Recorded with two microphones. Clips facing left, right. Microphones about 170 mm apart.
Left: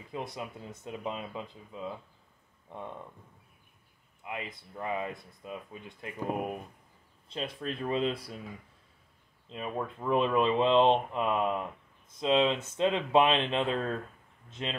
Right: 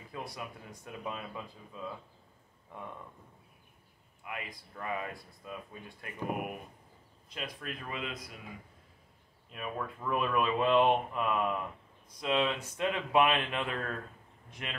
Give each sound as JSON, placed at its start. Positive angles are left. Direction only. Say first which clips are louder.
{"t": 0.1, "sound": "speech", "louder": "left 4 dB", "side_deg": 20}
{"t": 4.2, "sound": "speech", "louder": "left 3 dB", "side_deg": 20}
{"t": 7.2, "sound": "speech", "louder": "left 5 dB", "side_deg": 30}
{"t": 9.5, "sound": "speech", "louder": "left 3 dB", "side_deg": 25}